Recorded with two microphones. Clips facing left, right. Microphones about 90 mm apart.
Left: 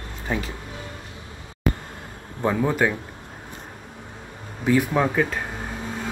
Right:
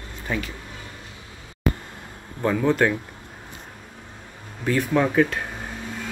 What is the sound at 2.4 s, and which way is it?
Speech, 10° left (ahead or behind).